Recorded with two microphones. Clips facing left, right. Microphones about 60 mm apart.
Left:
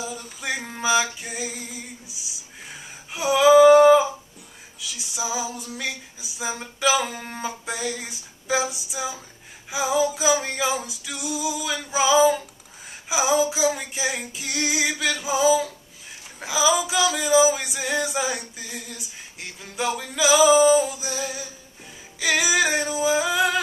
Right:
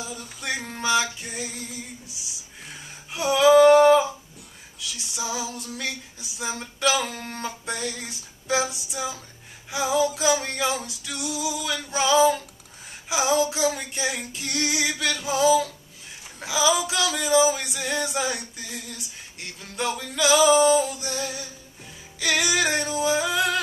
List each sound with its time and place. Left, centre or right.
0.0 s music: centre
4.7 s male singing: centre